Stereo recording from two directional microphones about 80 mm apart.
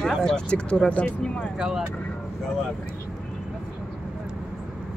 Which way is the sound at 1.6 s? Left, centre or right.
Centre.